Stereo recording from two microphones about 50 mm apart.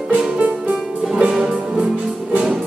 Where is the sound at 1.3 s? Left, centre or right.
Centre.